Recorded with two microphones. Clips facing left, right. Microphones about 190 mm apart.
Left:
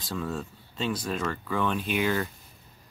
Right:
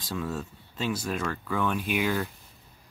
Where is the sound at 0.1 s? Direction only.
5° right (ahead or behind).